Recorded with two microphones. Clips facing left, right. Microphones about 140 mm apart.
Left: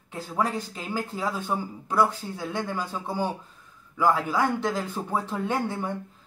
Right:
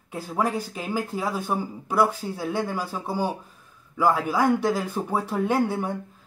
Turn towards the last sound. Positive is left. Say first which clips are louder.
# right 4 dB
turn(degrees=-10)  # may be behind; listen again after turning